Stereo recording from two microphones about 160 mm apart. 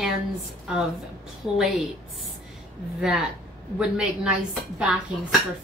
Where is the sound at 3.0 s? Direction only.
5° right (ahead or behind).